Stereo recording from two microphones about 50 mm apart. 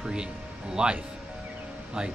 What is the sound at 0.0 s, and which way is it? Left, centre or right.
Speech, centre.